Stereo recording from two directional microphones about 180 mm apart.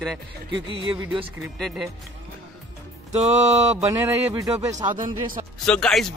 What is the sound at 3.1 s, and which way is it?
Speech, 40° right (ahead or behind).